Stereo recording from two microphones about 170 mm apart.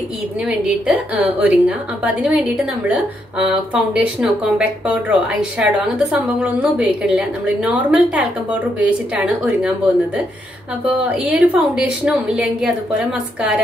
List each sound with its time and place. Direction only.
0.8 s a woman's voice: 10° right (ahead or behind)
11.1 s a woman's voice: 10° right (ahead or behind)